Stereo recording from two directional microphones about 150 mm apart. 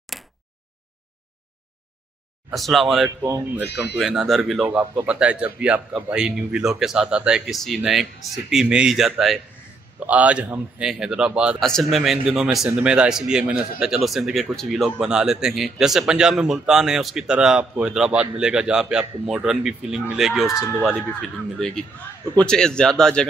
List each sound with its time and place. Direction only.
0.1 s a sound: centre (ahead or behind)
2.5 s a man's voice: centre (ahead or behind)
3.3 s speech: 20° right (ahead or behind)
4.0 s a man's voice: centre (ahead or behind)